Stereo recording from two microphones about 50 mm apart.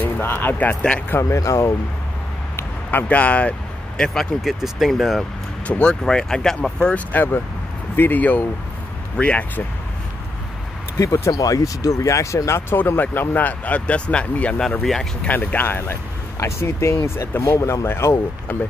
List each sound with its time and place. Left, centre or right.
0.2 s speech: left
1.3 s speech: left
2.9 s speech: left
4.0 s speech: centre
4.4 s speech: centre
5.7 s speech: centre
7.9 s speech: left
9.1 s speech: left
11.0 s speech: left
14.8 s speech: centre
15.2 s speech: left
16.3 s speech: left
17.4 s speech: left
17.8 s speech: left